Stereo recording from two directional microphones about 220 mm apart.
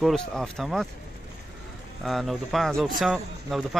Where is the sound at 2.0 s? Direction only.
Centre (ahead or behind).